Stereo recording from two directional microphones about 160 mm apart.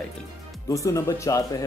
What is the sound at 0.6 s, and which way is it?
Speech, 20° left (ahead or behind).